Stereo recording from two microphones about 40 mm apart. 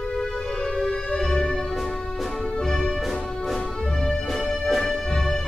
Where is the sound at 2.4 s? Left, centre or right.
Centre.